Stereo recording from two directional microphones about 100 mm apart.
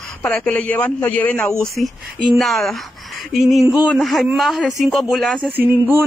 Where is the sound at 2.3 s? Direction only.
Centre (ahead or behind).